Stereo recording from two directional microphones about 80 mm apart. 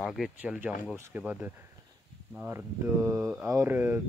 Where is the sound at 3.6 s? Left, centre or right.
Right.